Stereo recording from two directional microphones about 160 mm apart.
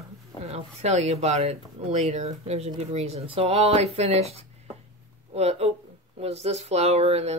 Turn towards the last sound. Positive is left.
turn(degrees=-40)  # may be behind; listen again after turning